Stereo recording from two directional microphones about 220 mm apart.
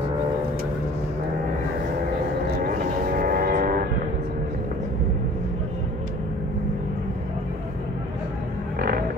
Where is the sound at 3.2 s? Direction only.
40° right (ahead or behind).